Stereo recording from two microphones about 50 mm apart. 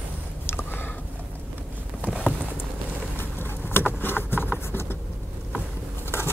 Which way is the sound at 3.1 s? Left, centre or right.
Left.